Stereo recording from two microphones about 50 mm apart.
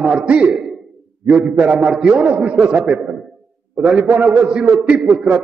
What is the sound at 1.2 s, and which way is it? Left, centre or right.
A man's voice, centre.